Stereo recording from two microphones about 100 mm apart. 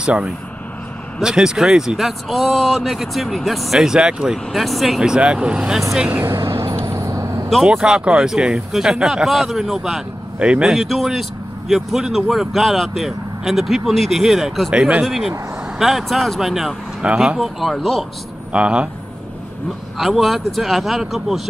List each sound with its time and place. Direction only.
0.0 s speech: 10° right (ahead or behind)
6.2 s vehicle: 30° right (ahead or behind)
7.6 s speech: 5° right (ahead or behind)
17.4 s speech: centre (ahead or behind)
18.5 s speech: 10° right (ahead or behind)
20.0 s speech: centre (ahead or behind)